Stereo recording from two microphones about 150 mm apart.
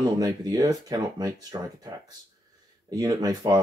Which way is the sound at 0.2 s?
25° right (ahead or behind).